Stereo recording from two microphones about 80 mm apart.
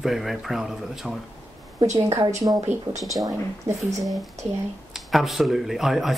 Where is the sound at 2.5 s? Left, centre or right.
Right.